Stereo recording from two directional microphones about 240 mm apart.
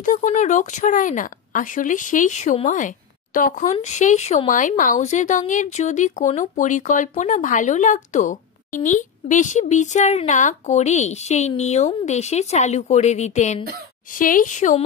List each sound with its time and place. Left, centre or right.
0.0 s speech: left